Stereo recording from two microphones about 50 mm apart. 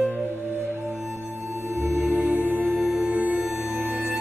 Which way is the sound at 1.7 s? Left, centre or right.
Right.